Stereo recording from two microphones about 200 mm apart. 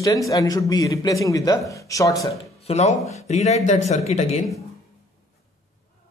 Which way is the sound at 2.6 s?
30° left (ahead or behind).